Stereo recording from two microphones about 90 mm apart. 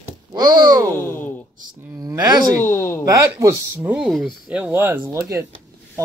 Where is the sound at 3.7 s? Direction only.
15° right (ahead or behind).